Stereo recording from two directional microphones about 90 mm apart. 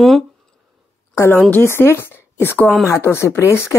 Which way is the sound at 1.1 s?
30° left (ahead or behind).